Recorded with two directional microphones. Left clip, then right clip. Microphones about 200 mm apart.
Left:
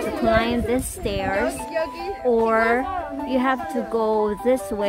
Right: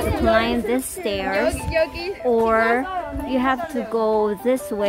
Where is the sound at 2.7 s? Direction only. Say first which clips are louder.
Right 1 dB; centre (ahead or behind).